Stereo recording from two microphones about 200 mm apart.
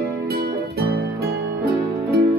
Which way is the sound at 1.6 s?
50° right (ahead or behind).